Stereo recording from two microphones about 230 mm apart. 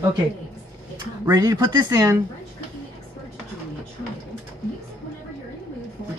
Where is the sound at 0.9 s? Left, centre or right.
Centre.